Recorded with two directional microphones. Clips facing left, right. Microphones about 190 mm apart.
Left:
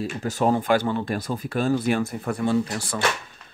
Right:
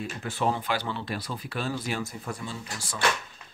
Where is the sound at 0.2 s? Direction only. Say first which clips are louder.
Left 6 dB; 40° left (ahead or behind).